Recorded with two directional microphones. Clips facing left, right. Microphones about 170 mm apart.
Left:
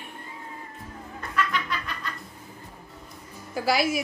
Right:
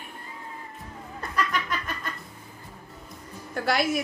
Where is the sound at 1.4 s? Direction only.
45° right (ahead or behind).